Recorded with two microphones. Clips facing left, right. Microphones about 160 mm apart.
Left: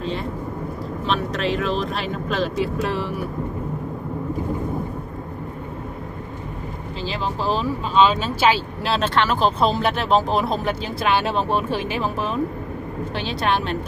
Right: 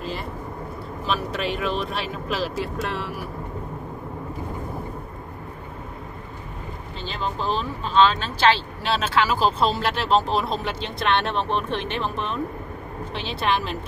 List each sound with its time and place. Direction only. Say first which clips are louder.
0.0 s vehicle: left 4 dB; 5° right (ahead or behind)
1.0 s speech: left 3 dB; 5° right (ahead or behind)
7.0 s speech: left 3 dB; 5° left (ahead or behind)